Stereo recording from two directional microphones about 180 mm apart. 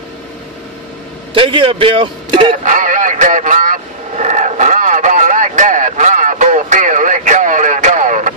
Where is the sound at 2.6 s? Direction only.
45° right (ahead or behind).